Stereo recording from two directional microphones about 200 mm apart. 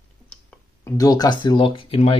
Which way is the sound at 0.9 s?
20° left (ahead or behind).